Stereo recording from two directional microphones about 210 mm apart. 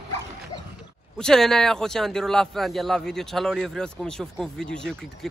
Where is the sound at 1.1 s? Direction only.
5° left (ahead or behind).